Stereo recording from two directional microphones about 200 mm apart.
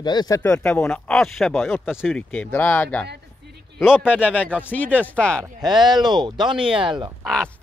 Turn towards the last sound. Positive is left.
turn(degrees=5)  # may be behind; listen again after turning